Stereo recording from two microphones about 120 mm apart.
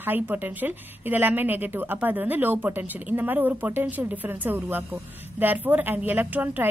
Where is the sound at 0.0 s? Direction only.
15° right (ahead or behind).